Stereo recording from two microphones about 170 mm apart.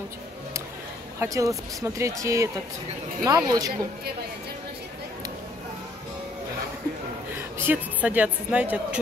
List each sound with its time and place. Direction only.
1.2 s speech: 20° right (ahead or behind)
7.3 s a woman's voice: 10° right (ahead or behind)